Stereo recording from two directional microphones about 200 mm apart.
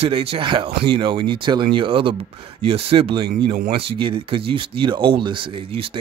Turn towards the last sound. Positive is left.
turn(degrees=-30)  # may be behind; listen again after turning